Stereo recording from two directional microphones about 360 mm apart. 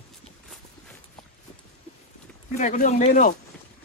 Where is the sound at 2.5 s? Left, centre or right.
Left.